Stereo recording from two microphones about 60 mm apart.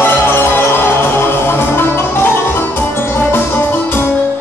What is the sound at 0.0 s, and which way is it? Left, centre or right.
Music, left.